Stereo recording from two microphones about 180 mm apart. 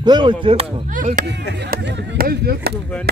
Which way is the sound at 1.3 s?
70° right (ahead or behind).